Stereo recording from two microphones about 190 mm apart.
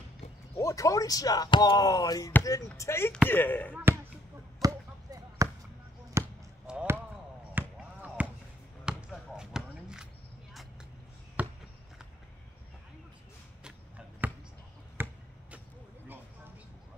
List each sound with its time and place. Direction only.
0.6 s speech: 15° left (ahead or behind)
3.7 s speech: 10° right (ahead or behind)
4.6 s basketball bounce: 20° right (ahead or behind)
11.4 s basketball bounce: 10° right (ahead or behind)
13.7 s a sound: 5° right (ahead or behind)
15.0 s basketball bounce: 10° right (ahead or behind)